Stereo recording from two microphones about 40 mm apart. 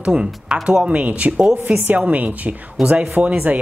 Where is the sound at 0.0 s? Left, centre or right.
Right.